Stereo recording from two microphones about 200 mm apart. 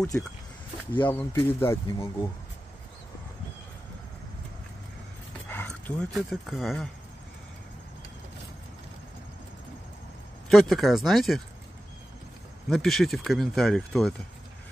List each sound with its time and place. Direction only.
0.1 s speech: 5° left (ahead or behind)
5.9 s speech: 5° left (ahead or behind)
10.5 s speech: centre (ahead or behind)
12.6 s speech: centre (ahead or behind)